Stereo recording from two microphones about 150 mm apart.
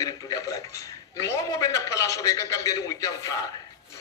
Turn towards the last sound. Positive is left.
turn(degrees=25)  # may be behind; listen again after turning